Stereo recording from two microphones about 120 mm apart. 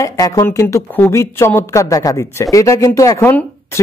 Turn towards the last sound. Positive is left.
turn(degrees=25)  # may be behind; listen again after turning